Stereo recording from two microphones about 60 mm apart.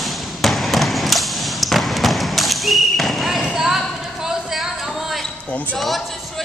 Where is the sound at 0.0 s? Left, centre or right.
Centre.